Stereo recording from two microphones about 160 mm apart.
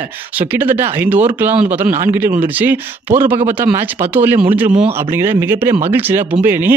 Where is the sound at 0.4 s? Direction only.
10° right (ahead or behind).